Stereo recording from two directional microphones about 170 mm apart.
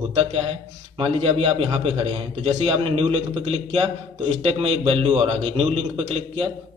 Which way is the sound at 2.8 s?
35° right (ahead or behind).